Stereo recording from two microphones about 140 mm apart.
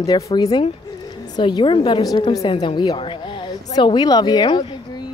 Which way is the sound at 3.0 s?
35° left (ahead or behind).